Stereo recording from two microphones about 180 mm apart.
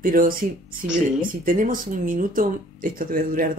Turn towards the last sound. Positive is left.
turn(degrees=-50)  # may be behind; listen again after turning